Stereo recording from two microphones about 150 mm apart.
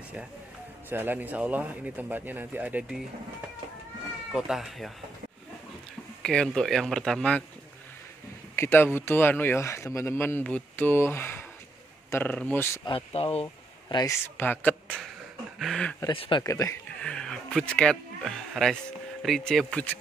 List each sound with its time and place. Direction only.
0.8 s a man's voice: 15° right (ahead or behind)
4.3 s speech: 5° right (ahead or behind)
6.2 s speech: 5° left (ahead or behind)
8.5 s speech: 15° left (ahead or behind)
12.9 s speech: 40° left (ahead or behind)
14.2 s speech: 10° left (ahead or behind)
16.1 s speech: 35° left (ahead or behind)
17.0 s speech: 5° left (ahead or behind)